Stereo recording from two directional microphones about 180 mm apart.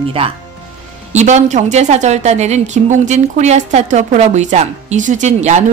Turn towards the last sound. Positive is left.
turn(degrees=-40)  # may be behind; listen again after turning